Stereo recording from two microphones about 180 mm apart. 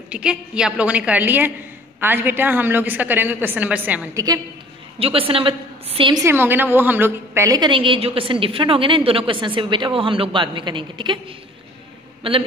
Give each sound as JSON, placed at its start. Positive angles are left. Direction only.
{"t": 0.1, "sound": "a woman's voice", "side_deg": -5}
{"t": 4.9, "sound": "a woman's voice", "side_deg": -30}
{"t": 6.2, "sound": "a woman's voice", "side_deg": -10}
{"t": 12.2, "sound": "a man's voice", "side_deg": -30}